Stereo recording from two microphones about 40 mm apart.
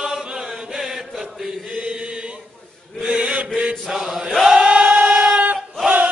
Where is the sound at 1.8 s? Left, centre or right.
Right.